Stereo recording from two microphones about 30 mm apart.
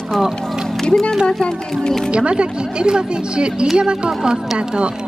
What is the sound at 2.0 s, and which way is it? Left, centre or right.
Speech, right.